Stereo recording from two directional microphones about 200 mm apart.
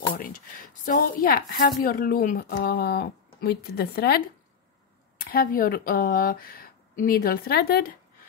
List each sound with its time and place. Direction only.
0.1 s a woman's voice: 45° left (ahead or behind)
5.2 s a woman's voice: 50° left (ahead or behind)